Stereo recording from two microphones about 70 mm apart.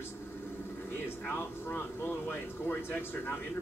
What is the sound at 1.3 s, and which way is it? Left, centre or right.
Speech, left.